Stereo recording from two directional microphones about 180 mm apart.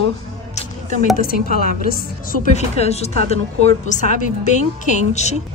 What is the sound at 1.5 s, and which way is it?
Speech, 55° left (ahead or behind).